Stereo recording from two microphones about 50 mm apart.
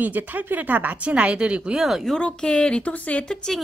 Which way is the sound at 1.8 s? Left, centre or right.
Centre.